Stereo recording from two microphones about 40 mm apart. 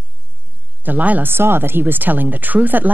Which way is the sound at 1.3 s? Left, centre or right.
Right.